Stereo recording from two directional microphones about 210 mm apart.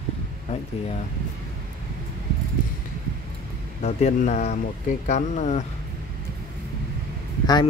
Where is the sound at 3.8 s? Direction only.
30° left (ahead or behind).